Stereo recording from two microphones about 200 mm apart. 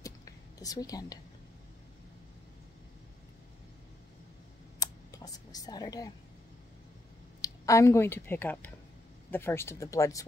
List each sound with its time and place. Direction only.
0.0 s whispering: 15° left (ahead or behind)
4.7 s a sound: 20° left (ahead or behind)
7.4 s speech: 15° left (ahead or behind)